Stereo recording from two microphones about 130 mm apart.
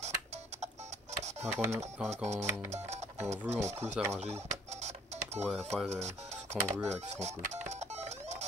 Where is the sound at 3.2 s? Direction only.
60° right (ahead or behind).